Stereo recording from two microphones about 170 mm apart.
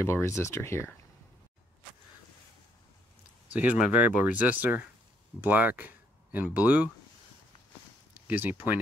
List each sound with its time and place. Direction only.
0.0 s speech: 15° left (ahead or behind)
3.5 s speech: 5° right (ahead or behind)
8.3 s speech: 10° right (ahead or behind)